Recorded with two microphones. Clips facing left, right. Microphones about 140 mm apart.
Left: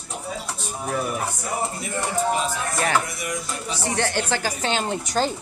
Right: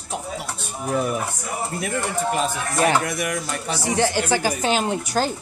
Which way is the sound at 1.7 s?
65° right (ahead or behind).